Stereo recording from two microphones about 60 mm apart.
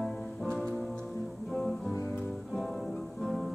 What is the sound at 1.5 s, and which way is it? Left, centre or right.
Music, centre.